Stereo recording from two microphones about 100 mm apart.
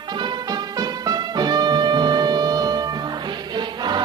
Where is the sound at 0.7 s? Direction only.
45° right (ahead or behind).